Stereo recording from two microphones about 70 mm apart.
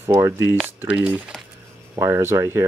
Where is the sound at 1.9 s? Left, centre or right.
Right.